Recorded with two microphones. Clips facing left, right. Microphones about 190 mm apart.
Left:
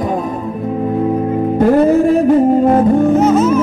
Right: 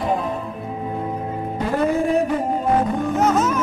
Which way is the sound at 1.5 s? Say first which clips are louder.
Left 13 dB; 55° left (ahead or behind).